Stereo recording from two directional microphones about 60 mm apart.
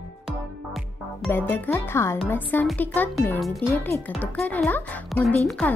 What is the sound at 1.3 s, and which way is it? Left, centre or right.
Speech, left.